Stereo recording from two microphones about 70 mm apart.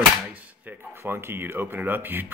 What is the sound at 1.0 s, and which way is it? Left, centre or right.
Speech, right.